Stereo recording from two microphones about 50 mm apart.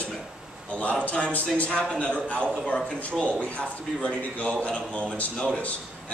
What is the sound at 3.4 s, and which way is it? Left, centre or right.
Speech, left.